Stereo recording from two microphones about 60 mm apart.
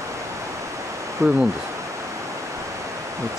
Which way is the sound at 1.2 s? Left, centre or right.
Right.